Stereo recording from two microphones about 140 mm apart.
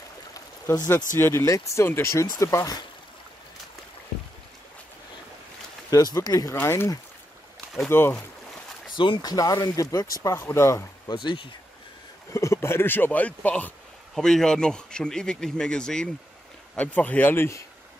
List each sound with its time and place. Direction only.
0.3 s stream: 25° left (ahead or behind)
1.1 s speech: 20° left (ahead or behind)
5.9 s speech: 25° left (ahead or behind)
8.9 s speech: 35° left (ahead or behind)
11.2 s speech: 35° left (ahead or behind)
12.3 s speech: 20° left (ahead or behind)